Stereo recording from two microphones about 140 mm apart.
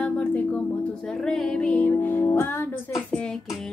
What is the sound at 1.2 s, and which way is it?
Speech, 5° left (ahead or behind).